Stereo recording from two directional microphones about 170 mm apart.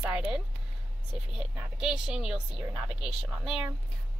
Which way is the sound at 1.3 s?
5° right (ahead or behind).